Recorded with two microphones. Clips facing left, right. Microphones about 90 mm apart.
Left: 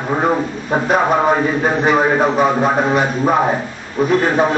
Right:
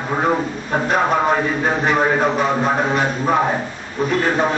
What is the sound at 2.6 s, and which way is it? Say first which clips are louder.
Speech: left 3 dB; 15° left (ahead or behind).